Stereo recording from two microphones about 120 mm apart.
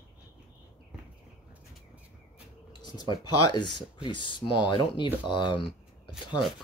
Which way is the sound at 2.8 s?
35° left (ahead or behind).